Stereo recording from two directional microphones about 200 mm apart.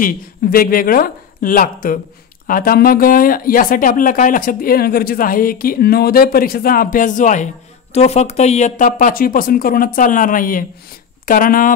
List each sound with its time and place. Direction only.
0.0 s speech: 45° left (ahead or behind)